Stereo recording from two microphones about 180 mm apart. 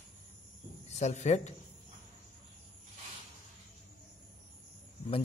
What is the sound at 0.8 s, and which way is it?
Speech, 40° left (ahead or behind).